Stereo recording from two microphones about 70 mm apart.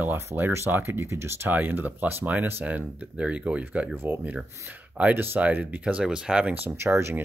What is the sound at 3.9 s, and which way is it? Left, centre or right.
Speech, right.